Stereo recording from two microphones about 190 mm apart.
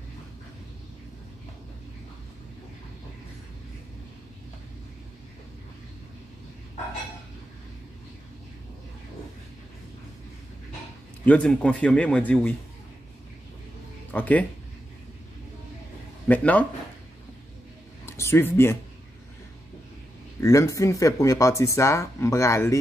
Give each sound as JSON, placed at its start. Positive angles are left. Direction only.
{"t": 11.2, "sound": "speech", "side_deg": 5}
{"t": 14.1, "sound": "speech", "side_deg": 10}
{"t": 16.3, "sound": "speech", "side_deg": 10}
{"t": 18.0, "sound": "speech", "side_deg": 15}
{"t": 20.3, "sound": "speech", "side_deg": 15}